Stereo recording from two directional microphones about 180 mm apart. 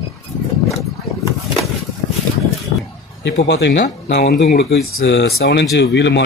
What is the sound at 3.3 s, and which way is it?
Speech, 70° left (ahead or behind).